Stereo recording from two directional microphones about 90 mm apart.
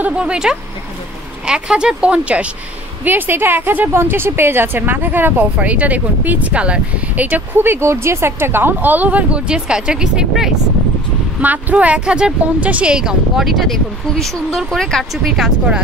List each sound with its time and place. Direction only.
0.0 s speech: 10° right (ahead or behind)
11.4 s speech: 15° right (ahead or behind)